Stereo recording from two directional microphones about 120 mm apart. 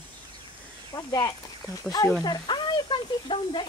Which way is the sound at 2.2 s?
40° left (ahead or behind).